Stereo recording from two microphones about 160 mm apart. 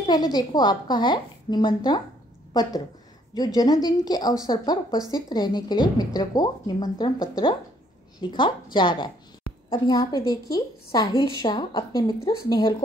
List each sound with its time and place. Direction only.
0.0 s a woman's voice: 25° left (ahead or behind)
3.3 s a woman's voice: 25° left (ahead or behind)